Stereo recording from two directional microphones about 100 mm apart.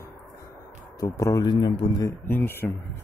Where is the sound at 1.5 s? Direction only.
45° left (ahead or behind).